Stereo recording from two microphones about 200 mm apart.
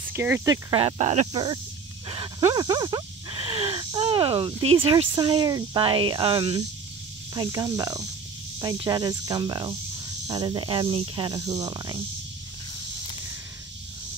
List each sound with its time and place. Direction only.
0.1 s speech: 10° right (ahead or behind)
0.7 s speech: 30° right (ahead or behind)